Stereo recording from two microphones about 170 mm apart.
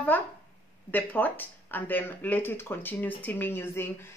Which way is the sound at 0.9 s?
10° left (ahead or behind).